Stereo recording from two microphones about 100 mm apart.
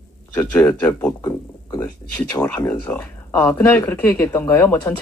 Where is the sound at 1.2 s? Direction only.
35° left (ahead or behind).